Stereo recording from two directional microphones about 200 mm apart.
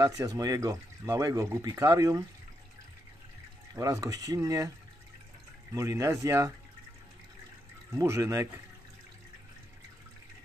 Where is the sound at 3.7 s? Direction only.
20° right (ahead or behind).